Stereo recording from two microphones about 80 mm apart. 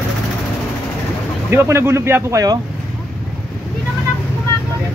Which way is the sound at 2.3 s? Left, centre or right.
Right.